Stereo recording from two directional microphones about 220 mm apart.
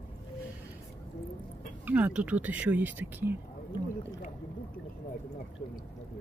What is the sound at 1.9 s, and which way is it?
Speech, 5° right (ahead or behind).